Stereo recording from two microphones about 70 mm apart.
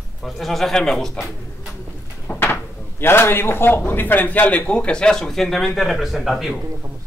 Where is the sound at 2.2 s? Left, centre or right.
Left.